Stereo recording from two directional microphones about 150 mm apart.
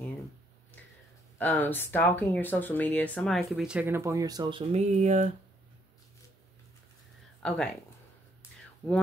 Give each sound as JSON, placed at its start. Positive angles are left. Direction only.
{"t": 1.4, "sound": "speech", "side_deg": 10}
{"t": 4.7, "sound": "speech", "side_deg": -50}
{"t": 7.4, "sound": "speech", "side_deg": 5}
{"t": 8.4, "sound": "a sound", "side_deg": 10}